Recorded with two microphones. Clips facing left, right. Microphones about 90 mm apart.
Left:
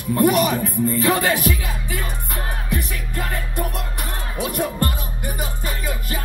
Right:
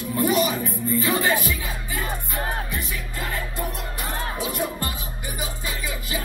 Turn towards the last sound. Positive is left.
turn(degrees=55)  # may be behind; listen again after turning